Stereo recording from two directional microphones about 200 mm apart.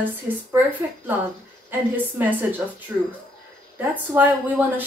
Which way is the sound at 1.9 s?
10° right (ahead or behind).